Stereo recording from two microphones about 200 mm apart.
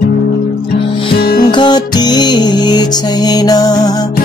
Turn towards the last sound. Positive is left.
turn(degrees=20)  # may be behind; listen again after turning